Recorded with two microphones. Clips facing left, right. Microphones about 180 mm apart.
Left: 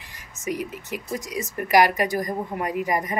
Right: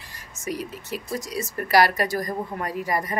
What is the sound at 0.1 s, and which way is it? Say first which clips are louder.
Speech: left 2 dB; 15° left (ahead or behind).